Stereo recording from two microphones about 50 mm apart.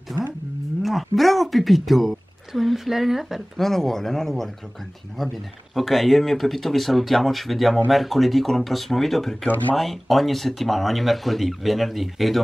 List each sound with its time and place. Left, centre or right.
0.8 s speech: centre
3.5 s speech: centre
9.5 s speech: left
9.8 s speech: centre